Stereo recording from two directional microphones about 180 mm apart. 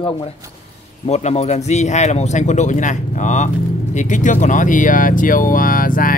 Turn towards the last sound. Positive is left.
turn(degrees=50)  # may be behind; listen again after turning